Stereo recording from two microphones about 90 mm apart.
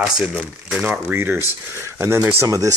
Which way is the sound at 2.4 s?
40° right (ahead or behind).